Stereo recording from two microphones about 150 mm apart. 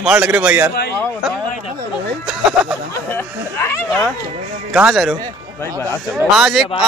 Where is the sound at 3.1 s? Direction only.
15° left (ahead or behind).